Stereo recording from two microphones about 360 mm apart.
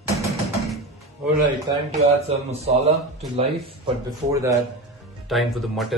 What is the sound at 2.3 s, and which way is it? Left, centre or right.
Speech, centre.